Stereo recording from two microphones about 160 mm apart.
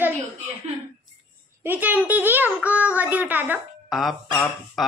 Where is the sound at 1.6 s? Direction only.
10° right (ahead or behind).